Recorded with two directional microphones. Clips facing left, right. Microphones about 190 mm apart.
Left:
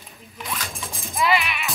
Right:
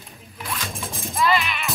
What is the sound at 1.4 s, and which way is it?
Music, centre (ahead or behind).